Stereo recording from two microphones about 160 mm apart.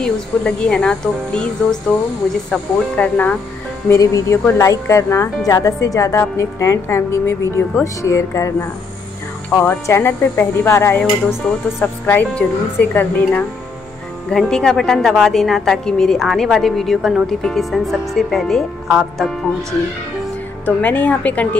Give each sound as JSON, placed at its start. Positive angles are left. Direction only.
{"t": 0.0, "sound": "a woman's voice", "side_deg": 5}
{"t": 3.9, "sound": "a woman's voice", "side_deg": 20}
{"t": 20.6, "sound": "speech", "side_deg": 10}